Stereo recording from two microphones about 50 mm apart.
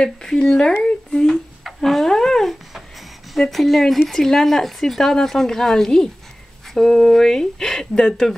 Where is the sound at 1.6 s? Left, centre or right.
Centre.